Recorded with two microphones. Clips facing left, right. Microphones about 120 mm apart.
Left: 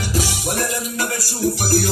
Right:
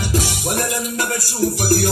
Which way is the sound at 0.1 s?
50° right (ahead or behind).